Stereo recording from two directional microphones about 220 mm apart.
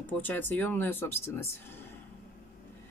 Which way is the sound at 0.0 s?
10° left (ahead or behind).